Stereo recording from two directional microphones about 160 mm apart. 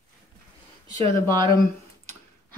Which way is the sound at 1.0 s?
30° right (ahead or behind).